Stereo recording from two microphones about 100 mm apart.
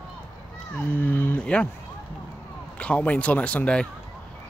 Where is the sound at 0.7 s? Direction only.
20° left (ahead or behind).